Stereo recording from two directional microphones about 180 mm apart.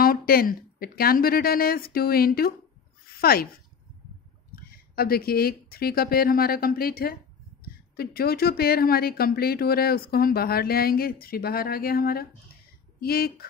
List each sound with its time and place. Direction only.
0.0 s speech: 55° left (ahead or behind)
4.9 s speech: 60° left (ahead or behind)